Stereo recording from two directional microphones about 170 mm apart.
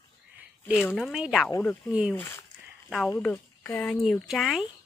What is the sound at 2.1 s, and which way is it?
Speech, 10° left (ahead or behind).